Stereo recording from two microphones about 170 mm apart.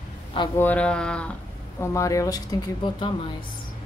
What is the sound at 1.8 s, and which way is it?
Speech, 15° left (ahead or behind).